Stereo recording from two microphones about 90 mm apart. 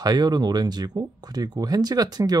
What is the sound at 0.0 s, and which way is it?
Speech, 50° right (ahead or behind).